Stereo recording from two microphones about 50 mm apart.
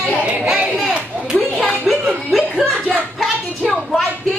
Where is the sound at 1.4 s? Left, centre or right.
Centre.